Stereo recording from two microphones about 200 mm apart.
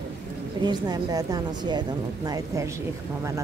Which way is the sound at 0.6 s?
20° right (ahead or behind).